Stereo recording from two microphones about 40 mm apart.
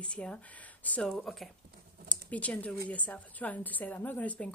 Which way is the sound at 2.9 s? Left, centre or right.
Left.